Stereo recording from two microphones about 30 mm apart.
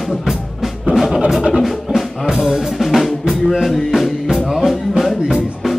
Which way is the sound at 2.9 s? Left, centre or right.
Centre.